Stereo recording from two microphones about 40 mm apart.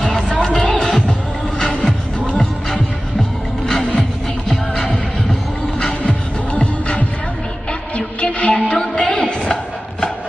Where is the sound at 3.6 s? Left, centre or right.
Centre; by 8.6 s left.